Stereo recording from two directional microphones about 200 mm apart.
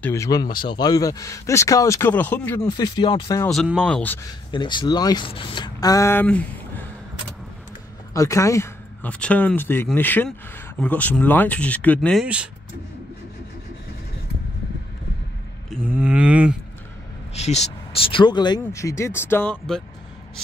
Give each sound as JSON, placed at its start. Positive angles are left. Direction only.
{"t": 0.0, "sound": "speech", "side_deg": 15}
{"t": 3.4, "sound": "speech", "side_deg": 0}
{"t": 4.5, "sound": "speech", "side_deg": 25}
{"t": 8.1, "sound": "speech", "side_deg": 15}
{"t": 16.0, "sound": "speech", "side_deg": -5}
{"t": 17.3, "sound": "speech", "side_deg": 35}